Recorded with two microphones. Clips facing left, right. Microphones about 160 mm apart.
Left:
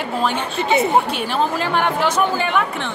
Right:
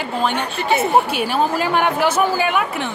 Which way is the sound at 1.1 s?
10° right (ahead or behind).